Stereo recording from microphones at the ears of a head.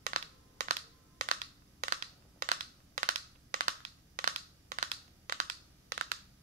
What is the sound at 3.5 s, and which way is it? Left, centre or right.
Crushing, right.